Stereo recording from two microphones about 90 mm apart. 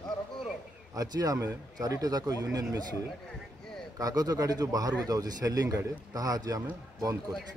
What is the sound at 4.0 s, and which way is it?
Speech, 45° right (ahead or behind).